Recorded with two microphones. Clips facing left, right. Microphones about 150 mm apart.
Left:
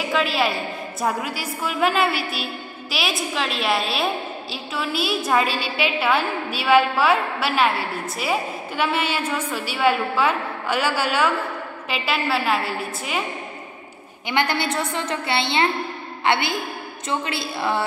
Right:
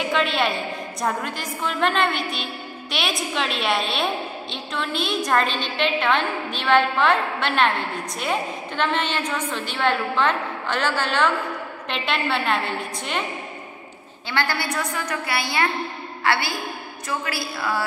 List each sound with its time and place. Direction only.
0.0 s a woman's voice: centre (ahead or behind)
14.3 s a woman's voice: 20° left (ahead or behind)